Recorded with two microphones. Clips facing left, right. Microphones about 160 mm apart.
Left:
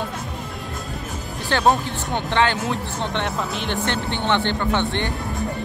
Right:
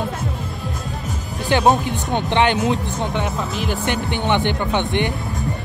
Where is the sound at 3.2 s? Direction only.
5° right (ahead or behind).